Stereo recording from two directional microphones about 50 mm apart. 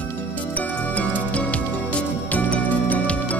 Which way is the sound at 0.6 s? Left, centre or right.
Left.